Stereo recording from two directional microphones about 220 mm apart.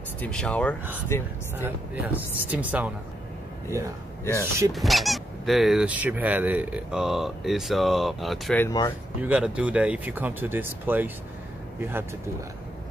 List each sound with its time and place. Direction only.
0.2 s speech: 5° left (ahead or behind)
1.6 s speech: 10° right (ahead or behind)
4.2 s speech: 10° left (ahead or behind)
4.7 s speech: centre (ahead or behind)
8.6 s speech: 20° left (ahead or behind)
9.2 s speech: 5° right (ahead or behind)